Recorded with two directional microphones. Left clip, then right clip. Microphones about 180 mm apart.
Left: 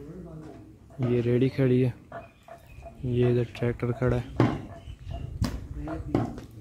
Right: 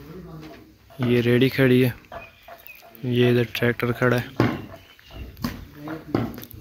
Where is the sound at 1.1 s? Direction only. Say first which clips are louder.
Right 6 dB; 5° right (ahead or behind).